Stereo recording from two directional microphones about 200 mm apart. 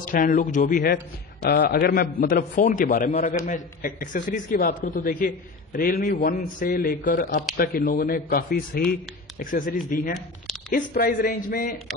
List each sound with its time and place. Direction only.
0.0 s a man's voice: 40° left (ahead or behind)
10.1 s a sound: centre (ahead or behind)
10.9 s a man's voice: 45° left (ahead or behind)